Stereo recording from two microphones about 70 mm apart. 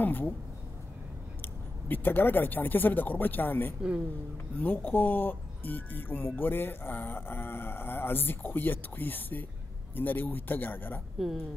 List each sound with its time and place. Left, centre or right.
0.0 s speech: left
1.4 s speech: left
11.1 s a woman's voice: centre